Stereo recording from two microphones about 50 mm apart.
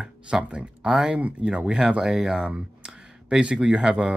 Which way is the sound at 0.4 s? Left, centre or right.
Right.